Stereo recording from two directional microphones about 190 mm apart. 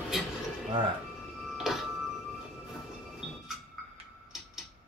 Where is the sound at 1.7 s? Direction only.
Centre (ahead or behind).